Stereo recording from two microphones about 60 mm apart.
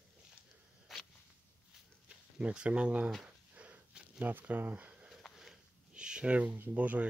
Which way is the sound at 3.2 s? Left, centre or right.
Right.